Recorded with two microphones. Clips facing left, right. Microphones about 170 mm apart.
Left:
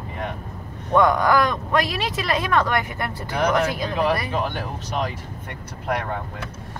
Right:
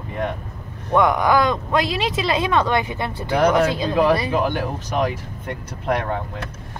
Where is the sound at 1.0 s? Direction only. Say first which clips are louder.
Right 1 dB; 10° right (ahead or behind).